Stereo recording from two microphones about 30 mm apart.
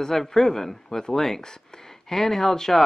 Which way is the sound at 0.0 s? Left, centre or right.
Centre.